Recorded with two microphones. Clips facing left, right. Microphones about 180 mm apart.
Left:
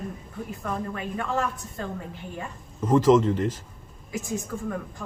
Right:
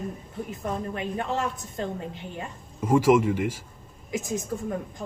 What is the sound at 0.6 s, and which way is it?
A woman's voice, 20° right (ahead or behind).